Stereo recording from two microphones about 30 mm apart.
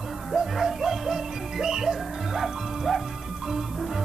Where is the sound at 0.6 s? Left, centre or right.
Centre.